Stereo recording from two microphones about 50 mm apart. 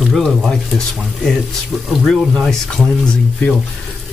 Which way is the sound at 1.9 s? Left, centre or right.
Centre.